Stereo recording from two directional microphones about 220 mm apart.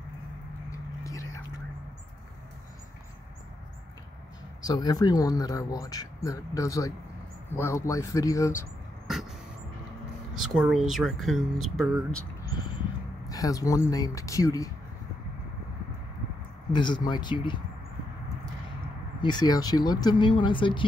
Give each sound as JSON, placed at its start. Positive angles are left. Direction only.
{"t": 0.7, "sound": "a sound", "side_deg": 15}
{"t": 4.6, "sound": "speech", "side_deg": 15}
{"t": 10.3, "sound": "speech", "side_deg": 0}
{"t": 13.3, "sound": "speech", "side_deg": 15}
{"t": 16.7, "sound": "speech", "side_deg": 20}
{"t": 19.2, "sound": "speech", "side_deg": 20}